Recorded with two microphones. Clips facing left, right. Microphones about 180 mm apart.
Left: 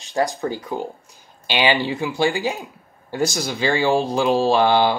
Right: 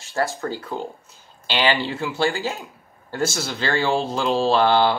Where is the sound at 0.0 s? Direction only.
15° left (ahead or behind).